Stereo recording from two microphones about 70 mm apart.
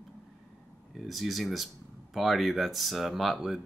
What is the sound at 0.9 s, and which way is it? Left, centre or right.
Speech, centre.